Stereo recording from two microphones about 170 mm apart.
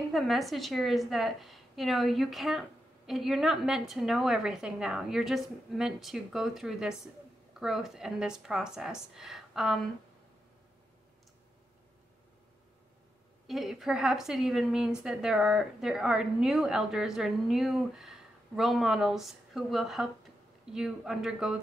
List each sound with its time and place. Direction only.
0.1 s a woman's voice: centre (ahead or behind)
13.5 s a woman's voice: centre (ahead or behind)